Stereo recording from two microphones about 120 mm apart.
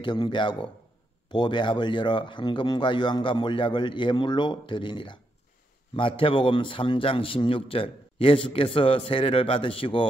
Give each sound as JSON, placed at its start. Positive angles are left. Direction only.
{"t": 0.0, "sound": "a man's voice", "side_deg": 40}